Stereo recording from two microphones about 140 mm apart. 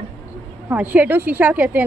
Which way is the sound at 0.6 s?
10° right (ahead or behind).